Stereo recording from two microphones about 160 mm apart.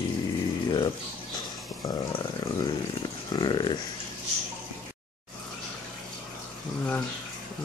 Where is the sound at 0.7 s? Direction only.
30° left (ahead or behind).